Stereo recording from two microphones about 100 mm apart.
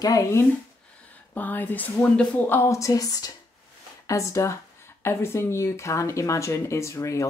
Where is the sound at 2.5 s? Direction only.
25° left (ahead or behind).